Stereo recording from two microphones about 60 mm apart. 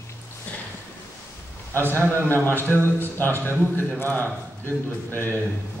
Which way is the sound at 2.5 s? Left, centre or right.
Right.